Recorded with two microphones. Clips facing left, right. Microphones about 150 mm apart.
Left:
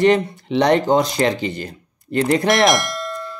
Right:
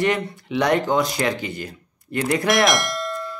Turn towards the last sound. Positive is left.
turn(degrees=0)  # may be behind; listen again after turning